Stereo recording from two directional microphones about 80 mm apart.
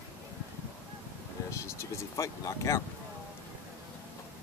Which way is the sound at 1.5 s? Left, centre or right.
Left.